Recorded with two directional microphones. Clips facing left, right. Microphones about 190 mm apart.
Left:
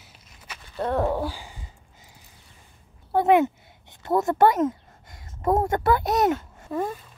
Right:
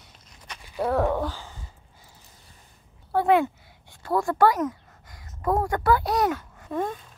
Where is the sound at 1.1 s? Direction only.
10° left (ahead or behind).